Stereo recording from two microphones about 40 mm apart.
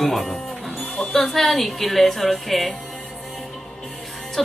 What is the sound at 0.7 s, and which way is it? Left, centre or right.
Music, left.